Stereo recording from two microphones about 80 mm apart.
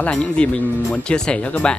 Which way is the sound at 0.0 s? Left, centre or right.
Centre.